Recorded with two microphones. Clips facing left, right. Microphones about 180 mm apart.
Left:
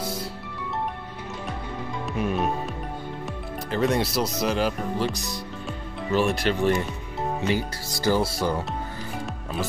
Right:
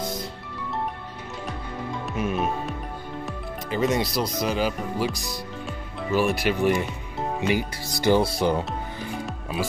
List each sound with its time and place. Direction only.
0.0 s music: 10° left (ahead or behind)
2.0 s music: centre (ahead or behind)
3.3 s speech: centre (ahead or behind); by 8.6 s 20° right (ahead or behind)
9.2 s music: 10° right (ahead or behind)